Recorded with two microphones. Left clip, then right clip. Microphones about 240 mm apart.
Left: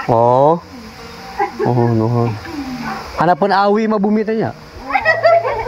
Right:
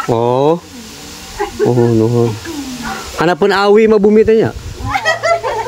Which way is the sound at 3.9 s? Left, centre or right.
Right.